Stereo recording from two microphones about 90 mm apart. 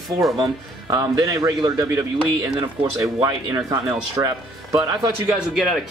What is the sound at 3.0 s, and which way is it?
Speech, 40° right (ahead or behind).